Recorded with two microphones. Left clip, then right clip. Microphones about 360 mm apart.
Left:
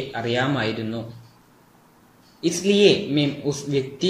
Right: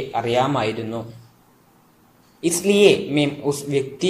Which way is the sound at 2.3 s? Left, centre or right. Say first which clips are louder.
Right 2 dB; centre.